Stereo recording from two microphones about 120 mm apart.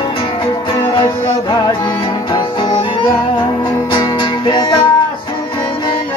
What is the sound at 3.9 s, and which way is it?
Music, 40° left (ahead or behind).